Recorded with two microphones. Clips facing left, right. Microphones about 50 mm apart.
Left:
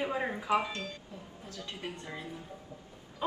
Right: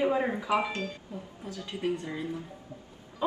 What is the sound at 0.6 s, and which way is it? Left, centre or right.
Speech, right.